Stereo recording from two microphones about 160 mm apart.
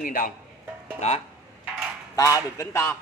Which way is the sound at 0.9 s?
40° left (ahead or behind).